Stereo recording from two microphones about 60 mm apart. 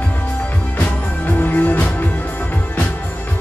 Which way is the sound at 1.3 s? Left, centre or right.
Left.